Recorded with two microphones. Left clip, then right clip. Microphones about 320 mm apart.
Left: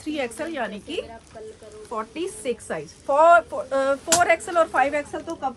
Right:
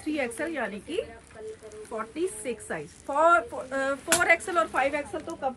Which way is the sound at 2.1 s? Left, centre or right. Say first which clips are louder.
Left 3 dB; left.